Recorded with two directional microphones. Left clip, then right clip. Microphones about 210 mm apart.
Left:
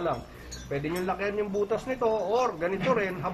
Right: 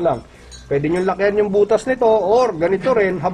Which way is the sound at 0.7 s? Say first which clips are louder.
Right 12 dB; 45° right (ahead or behind).